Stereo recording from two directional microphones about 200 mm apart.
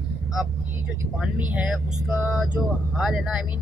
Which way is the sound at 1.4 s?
5° right (ahead or behind).